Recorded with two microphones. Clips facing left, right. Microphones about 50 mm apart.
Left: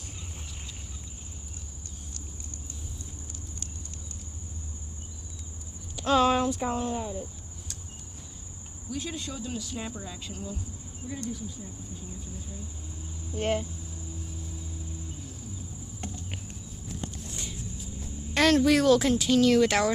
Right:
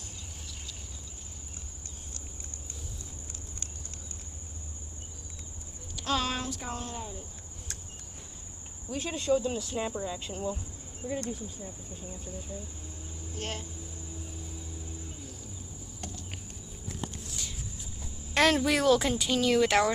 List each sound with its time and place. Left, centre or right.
5.9 s speech: centre
8.8 s speech: right
9.8 s speech: centre
10.2 s speech: right
13.4 s speech: centre
16.0 s a sound: left
18.3 s speech: centre